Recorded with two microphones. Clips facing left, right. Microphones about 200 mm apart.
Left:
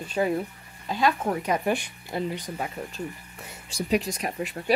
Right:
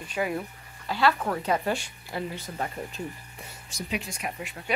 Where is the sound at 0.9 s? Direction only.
20° left (ahead or behind).